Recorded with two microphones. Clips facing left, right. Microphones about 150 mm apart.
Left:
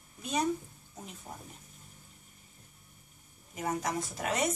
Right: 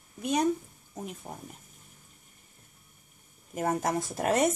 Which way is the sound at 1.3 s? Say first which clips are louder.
Right 4 dB; 40° right (ahead or behind).